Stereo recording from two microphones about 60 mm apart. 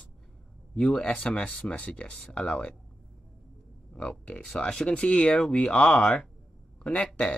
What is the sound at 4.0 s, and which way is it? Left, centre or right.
Speech, centre.